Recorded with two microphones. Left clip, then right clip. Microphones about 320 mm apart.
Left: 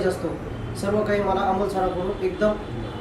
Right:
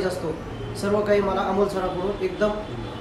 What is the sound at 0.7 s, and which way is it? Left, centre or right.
Speech, centre.